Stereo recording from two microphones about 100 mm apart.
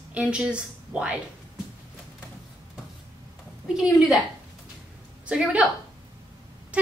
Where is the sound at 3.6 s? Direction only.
5° right (ahead or behind).